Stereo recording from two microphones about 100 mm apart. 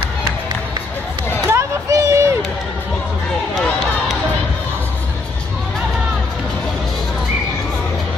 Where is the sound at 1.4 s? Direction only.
30° right (ahead or behind).